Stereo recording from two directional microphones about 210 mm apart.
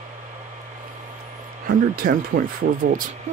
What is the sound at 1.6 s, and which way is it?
Speech, 45° right (ahead or behind).